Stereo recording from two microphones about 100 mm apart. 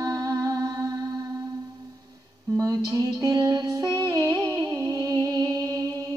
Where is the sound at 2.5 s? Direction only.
35° right (ahead or behind).